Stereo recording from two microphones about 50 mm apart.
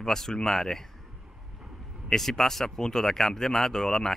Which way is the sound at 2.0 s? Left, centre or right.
Centre.